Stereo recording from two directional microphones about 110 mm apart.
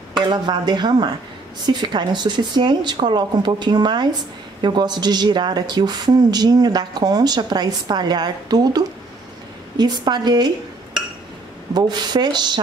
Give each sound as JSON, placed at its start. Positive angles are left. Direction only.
{"t": 0.3, "sound": "a woman's voice", "side_deg": -40}
{"t": 11.7, "sound": "a woman's voice", "side_deg": -40}